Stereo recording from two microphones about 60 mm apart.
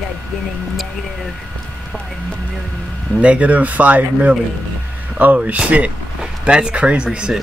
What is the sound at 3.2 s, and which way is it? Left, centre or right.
Speech, right.